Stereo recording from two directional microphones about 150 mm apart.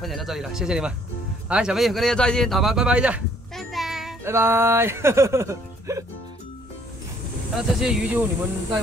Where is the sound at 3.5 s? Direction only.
Centre (ahead or behind).